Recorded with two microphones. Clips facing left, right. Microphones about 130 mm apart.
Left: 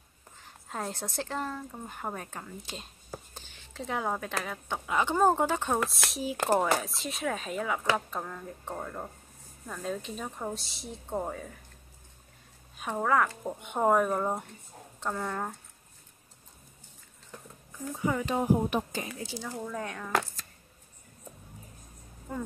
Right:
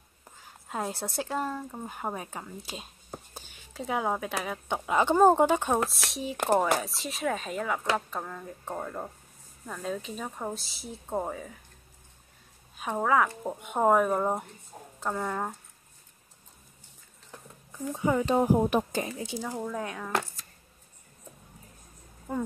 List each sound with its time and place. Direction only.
0.7 s speech: 10° right (ahead or behind)
5.9 s speech: centre (ahead or behind)
13.0 s speech: 5° right (ahead or behind)
17.9 s speech: 20° right (ahead or behind)
18.2 s speech: 35° right (ahead or behind)
18.7 s speech: 45° right (ahead or behind)
19.1 s speech: 15° right (ahead or behind)
19.7 s speech: 5° right (ahead or behind)